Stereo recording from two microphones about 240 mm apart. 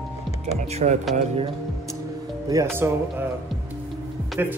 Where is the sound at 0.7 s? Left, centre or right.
Right.